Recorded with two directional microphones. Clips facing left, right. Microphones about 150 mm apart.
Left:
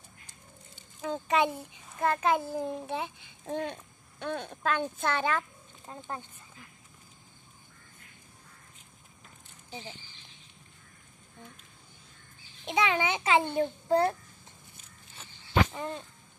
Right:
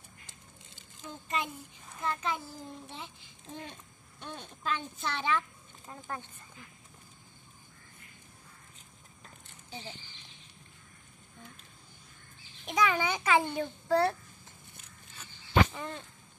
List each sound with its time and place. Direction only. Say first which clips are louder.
1.0 s a child's voice: left 9 dB; 85° left; by 5.4 s 50° left (ahead or behind)
5.9 s a child's voice: left 1 dB; 20° left (ahead or behind)
12.6 s a child's voice: left 1 dB; 25° left (ahead or behind)
15.7 s a sound: left 4 dB; 25° left (ahead or behind)